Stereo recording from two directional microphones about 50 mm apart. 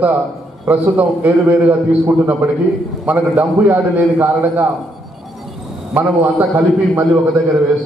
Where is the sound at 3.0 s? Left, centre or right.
Right.